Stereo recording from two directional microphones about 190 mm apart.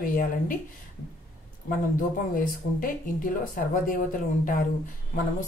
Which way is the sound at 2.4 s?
45° left (ahead or behind).